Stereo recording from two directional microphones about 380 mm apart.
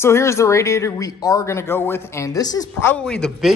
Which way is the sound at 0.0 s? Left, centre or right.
Centre.